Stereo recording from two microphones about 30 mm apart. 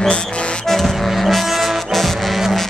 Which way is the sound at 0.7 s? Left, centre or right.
Centre.